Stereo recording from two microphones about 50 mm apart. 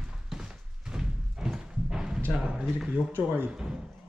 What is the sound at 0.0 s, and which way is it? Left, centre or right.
Thunk, centre.